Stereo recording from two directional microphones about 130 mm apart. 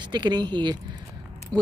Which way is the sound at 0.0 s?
35° right (ahead or behind).